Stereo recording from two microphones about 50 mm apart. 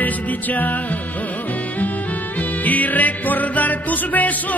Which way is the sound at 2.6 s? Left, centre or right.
Left.